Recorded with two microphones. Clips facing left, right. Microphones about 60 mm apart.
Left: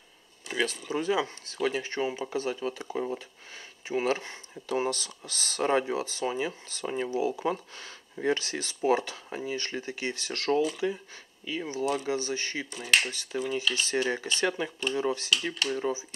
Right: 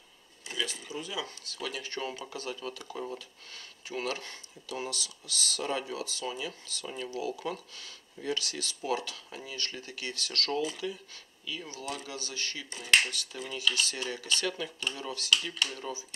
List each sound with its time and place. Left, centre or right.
0.5 s speech: left
1.2 s speech: left
4.6 s speech: left
10.8 s speech: left